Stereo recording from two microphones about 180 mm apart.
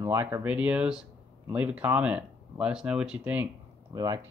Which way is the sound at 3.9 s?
20° right (ahead or behind).